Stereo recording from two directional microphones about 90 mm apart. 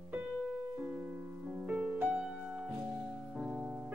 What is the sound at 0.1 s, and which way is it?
Music, 20° right (ahead or behind).